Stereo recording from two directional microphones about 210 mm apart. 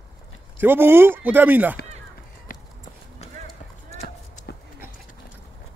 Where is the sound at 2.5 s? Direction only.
40° left (ahead or behind).